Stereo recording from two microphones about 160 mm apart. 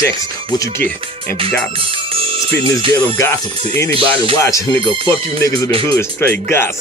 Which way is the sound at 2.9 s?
20° left (ahead or behind).